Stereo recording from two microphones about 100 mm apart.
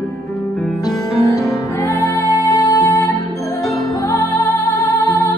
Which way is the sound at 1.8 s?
30° left (ahead or behind).